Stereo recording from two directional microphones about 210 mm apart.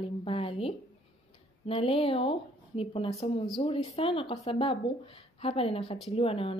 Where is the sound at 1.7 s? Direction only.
25° left (ahead or behind).